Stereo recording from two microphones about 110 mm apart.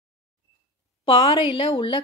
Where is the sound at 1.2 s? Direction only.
60° left (ahead or behind).